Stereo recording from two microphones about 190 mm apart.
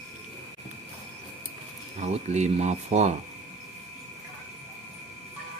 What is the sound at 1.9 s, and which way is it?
Speech, 35° right (ahead or behind).